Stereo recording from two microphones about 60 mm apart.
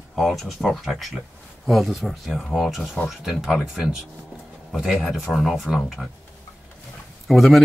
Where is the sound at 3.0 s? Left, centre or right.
Centre.